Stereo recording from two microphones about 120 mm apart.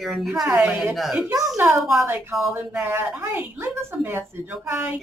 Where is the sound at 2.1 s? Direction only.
25° right (ahead or behind).